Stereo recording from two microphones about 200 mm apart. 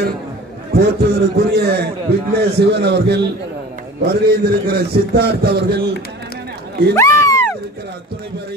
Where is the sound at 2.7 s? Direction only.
55° right (ahead or behind).